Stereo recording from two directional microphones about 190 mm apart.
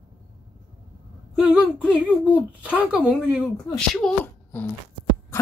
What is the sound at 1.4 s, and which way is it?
Speech, 5° right (ahead or behind).